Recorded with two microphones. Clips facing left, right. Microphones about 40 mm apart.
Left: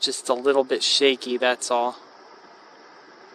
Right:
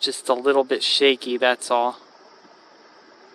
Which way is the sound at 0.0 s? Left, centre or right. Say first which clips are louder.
Right 1 dB; centre.